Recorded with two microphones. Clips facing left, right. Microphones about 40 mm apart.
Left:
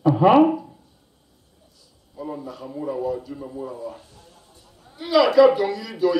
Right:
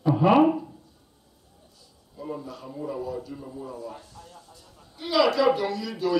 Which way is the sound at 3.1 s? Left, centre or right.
Centre.